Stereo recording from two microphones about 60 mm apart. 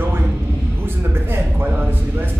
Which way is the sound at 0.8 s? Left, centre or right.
Right.